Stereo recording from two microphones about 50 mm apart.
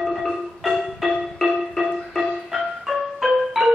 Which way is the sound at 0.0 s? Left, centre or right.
Centre.